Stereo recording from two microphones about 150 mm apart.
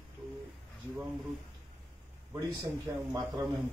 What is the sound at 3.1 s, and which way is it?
Speech, 20° right (ahead or behind).